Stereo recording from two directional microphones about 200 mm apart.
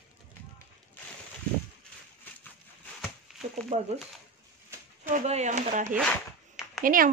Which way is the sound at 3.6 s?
30° right (ahead or behind).